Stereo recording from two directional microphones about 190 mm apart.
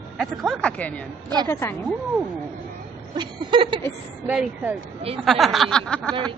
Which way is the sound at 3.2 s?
25° right (ahead or behind).